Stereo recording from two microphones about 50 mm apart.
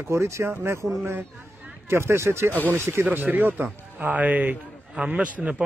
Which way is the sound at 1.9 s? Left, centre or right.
Right.